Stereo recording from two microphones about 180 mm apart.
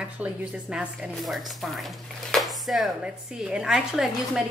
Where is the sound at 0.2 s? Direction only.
5° right (ahead or behind).